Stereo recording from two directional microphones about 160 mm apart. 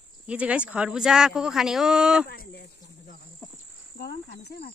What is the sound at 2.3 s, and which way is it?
Cricket, 75° left (ahead or behind).